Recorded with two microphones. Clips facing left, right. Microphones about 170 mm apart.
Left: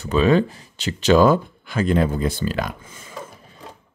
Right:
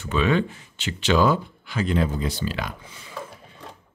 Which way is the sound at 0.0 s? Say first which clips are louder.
Left 5 dB; 35° left (ahead or behind).